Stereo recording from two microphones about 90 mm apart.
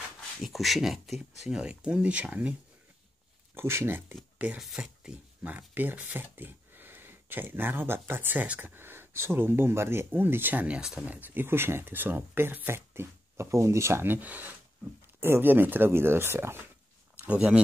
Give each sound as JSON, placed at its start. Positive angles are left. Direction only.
{"t": 0.4, "sound": "speech", "side_deg": 0}
{"t": 3.5, "sound": "speech", "side_deg": -30}
{"t": 4.6, "sound": "speech", "side_deg": -5}
{"t": 5.4, "sound": "speech", "side_deg": -15}
{"t": 11.1, "sound": "speech", "side_deg": -20}
{"t": 17.2, "sound": "speech", "side_deg": -15}